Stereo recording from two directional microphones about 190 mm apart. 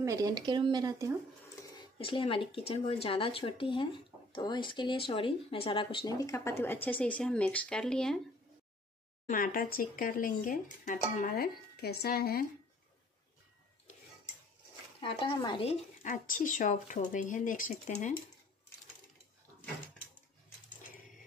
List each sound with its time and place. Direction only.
0.0 s speech: 20° right (ahead or behind)
2.0 s speech: 25° left (ahead or behind); by 8.2 s 5° left (ahead or behind)
9.3 s speech: 50° left (ahead or behind)
15.0 s speech: 25° left (ahead or behind); by 18.1 s 40° left (ahead or behind)